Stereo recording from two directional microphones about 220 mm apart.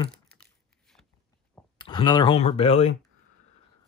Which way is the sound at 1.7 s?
20° left (ahead or behind).